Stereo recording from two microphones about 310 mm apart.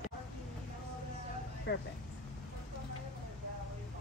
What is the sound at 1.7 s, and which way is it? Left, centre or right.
Speech, left.